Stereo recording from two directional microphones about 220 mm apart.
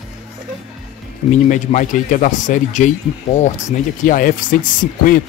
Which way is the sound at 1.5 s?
35° left (ahead or behind).